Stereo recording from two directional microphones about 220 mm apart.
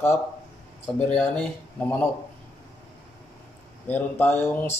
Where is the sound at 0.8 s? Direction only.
5° left (ahead or behind).